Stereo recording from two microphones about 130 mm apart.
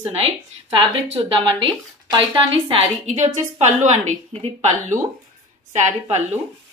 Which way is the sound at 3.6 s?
60° right (ahead or behind).